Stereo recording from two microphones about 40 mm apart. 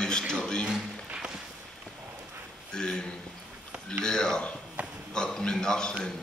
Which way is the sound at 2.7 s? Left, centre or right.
Centre.